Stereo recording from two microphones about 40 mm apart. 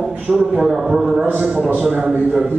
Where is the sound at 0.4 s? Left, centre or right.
Right.